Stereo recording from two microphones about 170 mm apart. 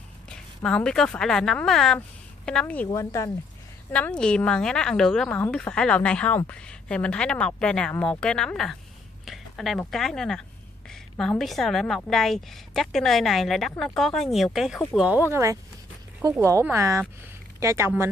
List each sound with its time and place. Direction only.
0.7 s a woman's voice: 5° left (ahead or behind)
3.9 s a woman's voice: 5° left (ahead or behind)
15.3 s speech: 20° right (ahead or behind)